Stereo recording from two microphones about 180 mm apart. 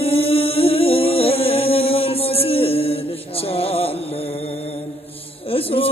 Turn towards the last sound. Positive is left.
turn(degrees=30)  # may be behind; listen again after turning